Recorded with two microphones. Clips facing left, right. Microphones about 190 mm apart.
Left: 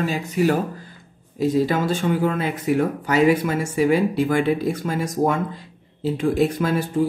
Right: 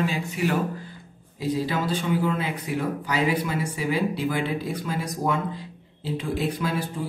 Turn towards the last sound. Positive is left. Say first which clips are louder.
# left 6 dB
turn(degrees=45)  # may be behind; listen again after turning